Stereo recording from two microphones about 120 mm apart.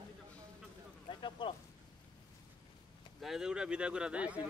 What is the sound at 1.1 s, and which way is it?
Speech, 40° left (ahead or behind).